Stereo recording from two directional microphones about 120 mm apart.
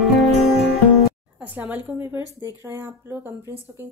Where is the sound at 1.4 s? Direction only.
15° right (ahead or behind).